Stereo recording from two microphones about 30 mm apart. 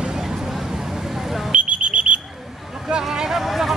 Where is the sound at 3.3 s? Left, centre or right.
Centre.